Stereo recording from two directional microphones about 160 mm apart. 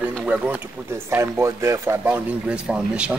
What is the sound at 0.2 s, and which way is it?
Speech, 10° right (ahead or behind).